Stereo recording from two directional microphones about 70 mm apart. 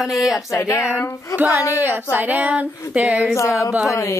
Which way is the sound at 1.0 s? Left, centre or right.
Left.